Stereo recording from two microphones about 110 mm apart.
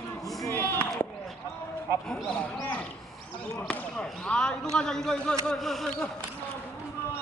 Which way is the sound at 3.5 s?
10° left (ahead or behind).